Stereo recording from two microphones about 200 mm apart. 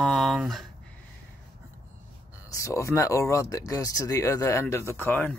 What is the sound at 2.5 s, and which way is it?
Speech, 15° left (ahead or behind).